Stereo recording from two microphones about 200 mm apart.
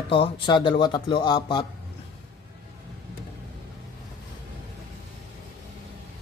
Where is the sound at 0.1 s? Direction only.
25° left (ahead or behind).